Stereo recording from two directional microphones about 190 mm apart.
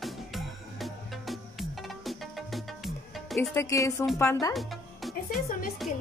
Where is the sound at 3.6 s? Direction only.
15° left (ahead or behind).